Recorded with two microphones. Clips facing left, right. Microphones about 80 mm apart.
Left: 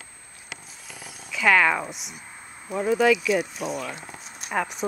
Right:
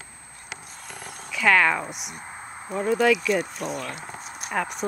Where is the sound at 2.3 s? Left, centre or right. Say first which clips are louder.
Right 3 dB; right.